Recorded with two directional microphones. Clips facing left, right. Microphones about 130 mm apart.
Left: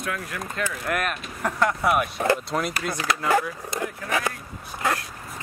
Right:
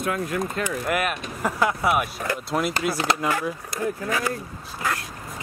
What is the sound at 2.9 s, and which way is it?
Speech, 30° right (ahead or behind).